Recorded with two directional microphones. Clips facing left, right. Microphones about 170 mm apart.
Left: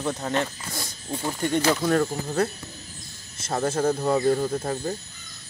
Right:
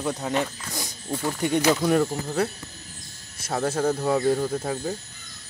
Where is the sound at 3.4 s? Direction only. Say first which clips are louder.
Even; 10° right (ahead or behind).